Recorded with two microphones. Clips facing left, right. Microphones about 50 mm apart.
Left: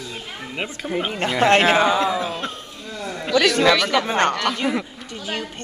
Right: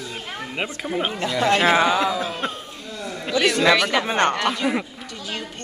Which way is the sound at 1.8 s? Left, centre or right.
Right.